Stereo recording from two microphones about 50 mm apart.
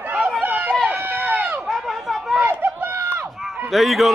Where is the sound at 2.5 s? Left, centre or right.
Right.